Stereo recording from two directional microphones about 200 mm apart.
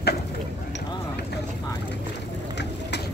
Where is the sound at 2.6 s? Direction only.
60° left (ahead or behind).